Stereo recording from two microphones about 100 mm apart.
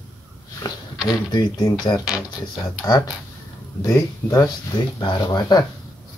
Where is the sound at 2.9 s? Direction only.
35° left (ahead or behind).